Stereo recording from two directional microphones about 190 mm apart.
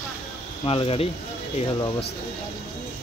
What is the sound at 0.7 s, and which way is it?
Speech, 30° left (ahead or behind).